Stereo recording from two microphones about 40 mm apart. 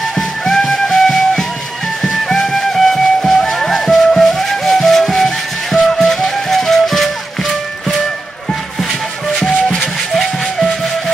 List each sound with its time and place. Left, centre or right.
0.5 s music: centre
9.5 s music: left
10.1 s music: centre